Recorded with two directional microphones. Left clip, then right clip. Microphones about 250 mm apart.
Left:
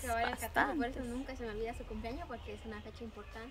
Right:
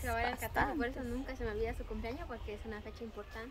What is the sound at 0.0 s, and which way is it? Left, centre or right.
A woman's voice, centre.